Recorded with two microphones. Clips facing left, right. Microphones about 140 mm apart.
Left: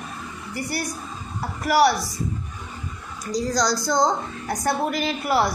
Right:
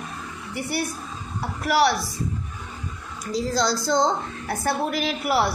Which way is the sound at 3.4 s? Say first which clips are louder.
Left 1 dB; 5° right (ahead or behind).